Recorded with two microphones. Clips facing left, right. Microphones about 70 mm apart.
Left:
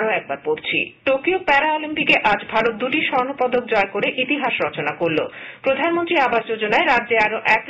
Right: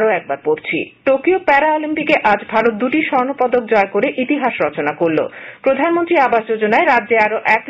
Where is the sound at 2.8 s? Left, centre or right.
Right.